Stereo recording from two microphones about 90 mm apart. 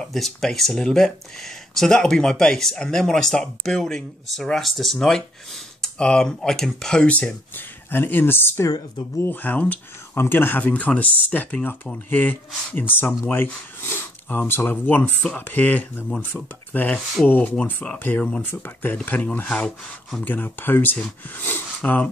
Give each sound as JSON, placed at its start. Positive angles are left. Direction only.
{"t": 0.0, "sound": "speech", "side_deg": 5}